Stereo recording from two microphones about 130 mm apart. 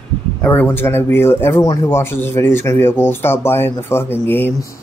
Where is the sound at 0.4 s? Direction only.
15° left (ahead or behind).